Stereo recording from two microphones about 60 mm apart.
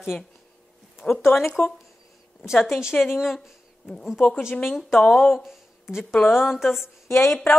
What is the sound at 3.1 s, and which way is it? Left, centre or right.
Speech, centre.